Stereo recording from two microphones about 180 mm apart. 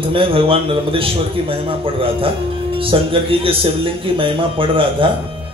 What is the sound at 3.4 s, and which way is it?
Speech, 30° right (ahead or behind).